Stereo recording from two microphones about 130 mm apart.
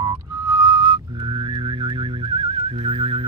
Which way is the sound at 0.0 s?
30° right (ahead or behind).